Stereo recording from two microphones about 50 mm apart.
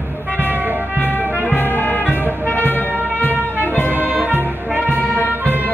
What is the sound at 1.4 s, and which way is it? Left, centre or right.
Brass instrument, left.